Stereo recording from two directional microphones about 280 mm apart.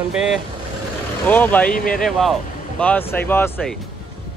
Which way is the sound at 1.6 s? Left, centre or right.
Left.